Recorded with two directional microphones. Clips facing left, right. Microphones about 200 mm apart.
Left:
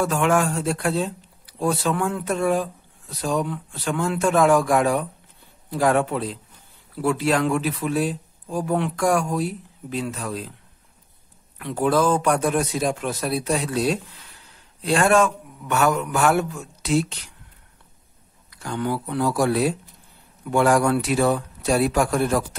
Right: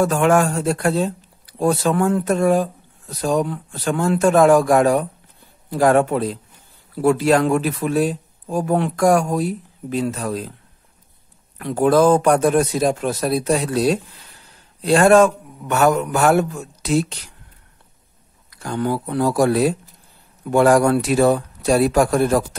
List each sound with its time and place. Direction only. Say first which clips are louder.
0.0 s speech: right 4 dB; 45° right (ahead or behind)
11.5 s speech: right 5 dB; 45° right (ahead or behind)
18.5 s speech: right 4 dB; 40° right (ahead or behind)